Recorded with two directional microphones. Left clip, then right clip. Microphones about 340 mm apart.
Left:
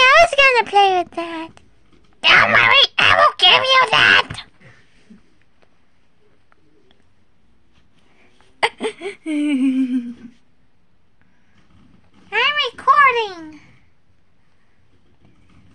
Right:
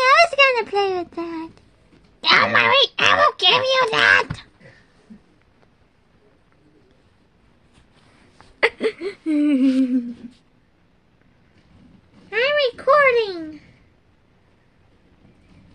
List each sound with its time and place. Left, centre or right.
0.0 s a child's voice: left
8.5 s speech: centre
12.3 s speech: centre